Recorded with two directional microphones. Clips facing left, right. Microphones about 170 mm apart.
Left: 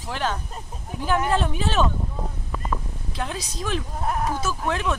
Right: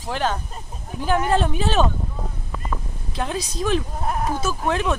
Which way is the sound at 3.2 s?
25° right (ahead or behind).